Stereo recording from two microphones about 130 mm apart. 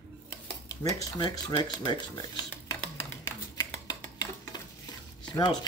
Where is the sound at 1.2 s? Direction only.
35° left (ahead or behind).